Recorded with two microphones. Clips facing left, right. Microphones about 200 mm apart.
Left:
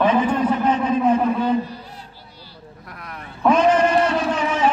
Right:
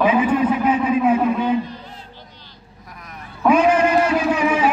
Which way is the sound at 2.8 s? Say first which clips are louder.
Left 1 dB; 65° left (ahead or behind).